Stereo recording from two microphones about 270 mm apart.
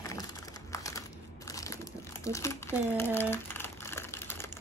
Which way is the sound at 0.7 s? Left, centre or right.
Centre.